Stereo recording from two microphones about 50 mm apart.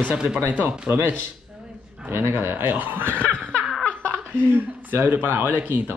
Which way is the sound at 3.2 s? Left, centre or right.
Left.